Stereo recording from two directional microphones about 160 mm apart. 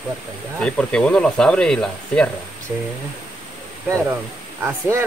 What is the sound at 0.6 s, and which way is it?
Speech, 5° left (ahead or behind).